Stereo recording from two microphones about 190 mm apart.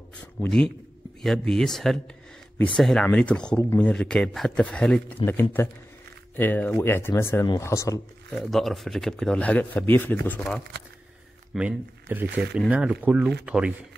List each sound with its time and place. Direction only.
0.2 s a sound: 5° left (ahead or behind)
1.2 s speech: centre (ahead or behind)
8.4 s speech: centre (ahead or behind)
11.5 s speech: 10° right (ahead or behind)